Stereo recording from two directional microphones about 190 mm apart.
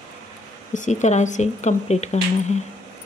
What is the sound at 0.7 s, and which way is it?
Speech, 40° left (ahead or behind).